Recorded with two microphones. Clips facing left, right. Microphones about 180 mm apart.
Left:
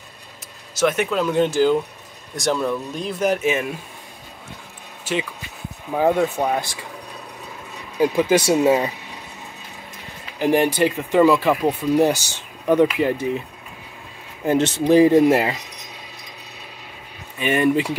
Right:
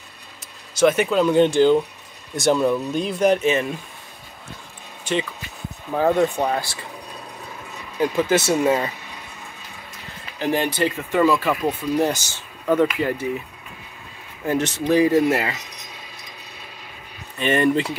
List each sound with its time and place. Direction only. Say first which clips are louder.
0.7 s speech: right 3 dB; centre (ahead or behind)
5.0 s speech: right 1 dB; 5° left (ahead or behind)
6.6 s speech: left 1 dB; 15° left (ahead or behind)
8.0 s speech: left 2 dB; 15° left (ahead or behind)
10.4 s speech: left 4 dB; 15° left (ahead or behind)
14.4 s speech: left 4 dB; 25° left (ahead or behind)
17.4 s speech: even; 10° left (ahead or behind)